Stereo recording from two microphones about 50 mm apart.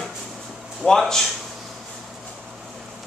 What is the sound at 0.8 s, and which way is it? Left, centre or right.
Speech, centre.